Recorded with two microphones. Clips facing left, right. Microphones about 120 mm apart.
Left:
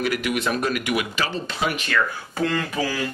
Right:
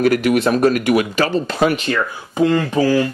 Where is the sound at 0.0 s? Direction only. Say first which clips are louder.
Right 9 dB; 45° right (ahead or behind).